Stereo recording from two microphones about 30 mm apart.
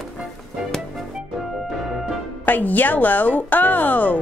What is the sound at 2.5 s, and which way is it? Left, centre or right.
Speech, left.